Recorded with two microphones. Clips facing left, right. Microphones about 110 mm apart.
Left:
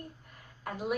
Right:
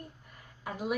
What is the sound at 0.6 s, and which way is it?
Speech, centre (ahead or behind).